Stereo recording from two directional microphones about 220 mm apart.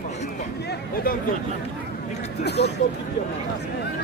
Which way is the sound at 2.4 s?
50° left (ahead or behind).